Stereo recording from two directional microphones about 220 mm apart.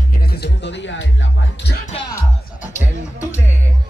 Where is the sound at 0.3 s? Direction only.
50° left (ahead or behind).